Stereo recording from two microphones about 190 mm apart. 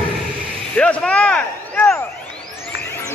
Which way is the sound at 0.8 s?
5° left (ahead or behind).